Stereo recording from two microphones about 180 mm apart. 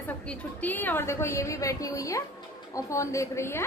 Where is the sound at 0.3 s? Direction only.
10° left (ahead or behind).